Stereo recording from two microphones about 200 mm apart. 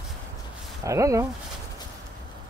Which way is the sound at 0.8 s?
15° right (ahead or behind).